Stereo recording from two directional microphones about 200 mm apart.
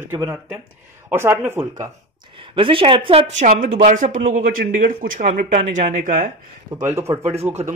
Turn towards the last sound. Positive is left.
turn(degrees=-15)  # may be behind; listen again after turning